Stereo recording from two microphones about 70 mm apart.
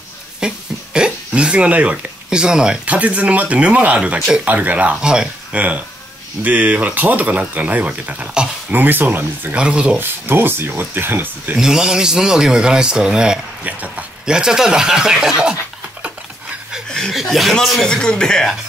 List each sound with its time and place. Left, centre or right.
0.4 s cough: centre
0.9 s speech: centre
9.6 s speech: centre
9.9 s speech: right
11.5 s speech: centre
14.3 s speech: centre
17.1 s speech: centre
17.8 s speech: centre